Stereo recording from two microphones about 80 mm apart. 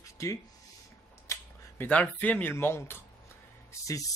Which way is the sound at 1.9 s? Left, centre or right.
Centre.